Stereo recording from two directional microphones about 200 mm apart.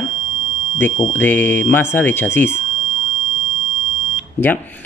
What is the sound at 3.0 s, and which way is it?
Smoke detector, 40° right (ahead or behind).